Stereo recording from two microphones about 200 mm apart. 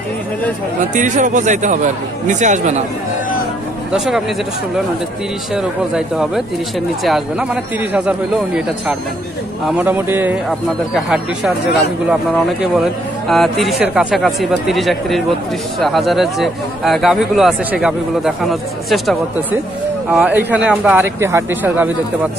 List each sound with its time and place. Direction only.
0.9 s speech: 40° right (ahead or behind)
3.9 s speech: centre (ahead or behind)
5.5 s speech: 5° right (ahead or behind)